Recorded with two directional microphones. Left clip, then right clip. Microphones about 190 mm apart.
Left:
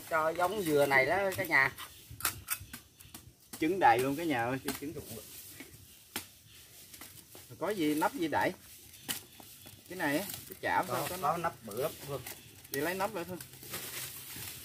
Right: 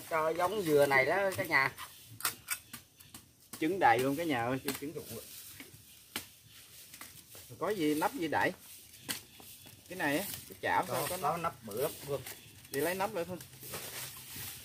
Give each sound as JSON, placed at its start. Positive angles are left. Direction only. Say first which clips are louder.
{"t": 0.1, "sound": "speech", "louder": "left 1 dB", "side_deg": 0}
{"t": 7.5, "sound": "speech", "louder": "even", "side_deg": -15}
{"t": 9.8, "sound": "speech", "louder": "even", "side_deg": -15}
{"t": 10.9, "sound": "speech", "louder": "left 1 dB", "side_deg": 0}
{"t": 12.7, "sound": "speech", "louder": "right 1 dB", "side_deg": -15}